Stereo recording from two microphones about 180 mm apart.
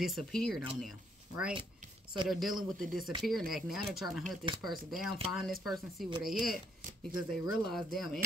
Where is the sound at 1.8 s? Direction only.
45° right (ahead or behind).